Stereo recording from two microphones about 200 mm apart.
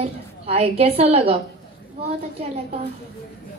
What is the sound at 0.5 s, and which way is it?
Speech, 30° right (ahead or behind).